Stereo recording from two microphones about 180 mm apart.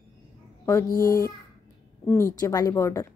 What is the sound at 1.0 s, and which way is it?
Speech, 20° left (ahead or behind).